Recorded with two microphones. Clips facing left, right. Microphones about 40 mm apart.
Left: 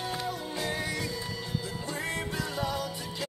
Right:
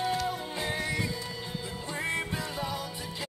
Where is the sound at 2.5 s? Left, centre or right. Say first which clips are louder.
Left 4 dB; centre.